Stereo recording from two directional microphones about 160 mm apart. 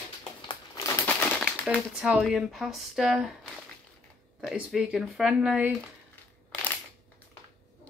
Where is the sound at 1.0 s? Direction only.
10° left (ahead or behind).